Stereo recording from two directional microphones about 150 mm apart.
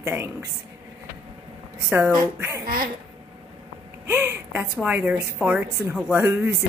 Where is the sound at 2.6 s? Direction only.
70° right (ahead or behind).